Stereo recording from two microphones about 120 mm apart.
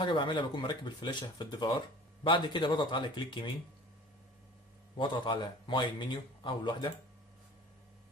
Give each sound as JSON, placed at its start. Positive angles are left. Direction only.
{"t": 0.0, "sound": "speech", "side_deg": 40}
{"t": 4.9, "sound": "speech", "side_deg": 40}